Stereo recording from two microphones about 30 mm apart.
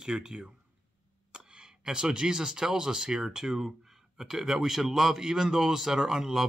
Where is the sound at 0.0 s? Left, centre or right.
Right.